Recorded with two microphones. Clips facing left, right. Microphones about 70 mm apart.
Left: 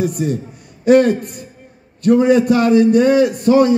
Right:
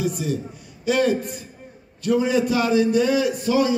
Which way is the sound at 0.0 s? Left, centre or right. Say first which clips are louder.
Left 6 dB; left.